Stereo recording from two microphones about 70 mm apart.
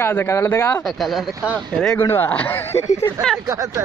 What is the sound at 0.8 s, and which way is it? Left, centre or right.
Speech, centre.